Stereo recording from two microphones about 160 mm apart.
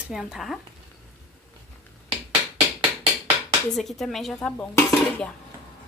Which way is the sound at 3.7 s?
Centre (ahead or behind).